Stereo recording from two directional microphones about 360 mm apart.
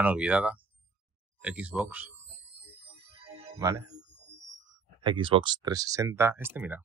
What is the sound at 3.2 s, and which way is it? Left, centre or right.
Music, centre.